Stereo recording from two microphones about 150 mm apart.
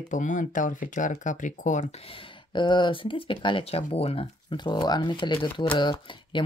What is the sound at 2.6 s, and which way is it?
Speech, 30° left (ahead or behind).